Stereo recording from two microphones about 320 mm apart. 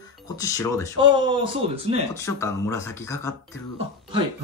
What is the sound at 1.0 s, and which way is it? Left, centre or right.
Speech, centre.